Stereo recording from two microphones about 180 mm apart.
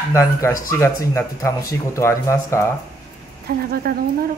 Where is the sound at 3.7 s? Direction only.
55° right (ahead or behind).